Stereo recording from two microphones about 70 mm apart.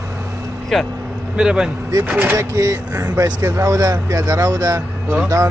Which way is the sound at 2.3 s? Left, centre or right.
Right.